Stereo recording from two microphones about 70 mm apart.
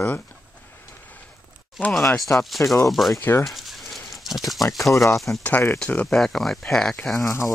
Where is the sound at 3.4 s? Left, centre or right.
Centre.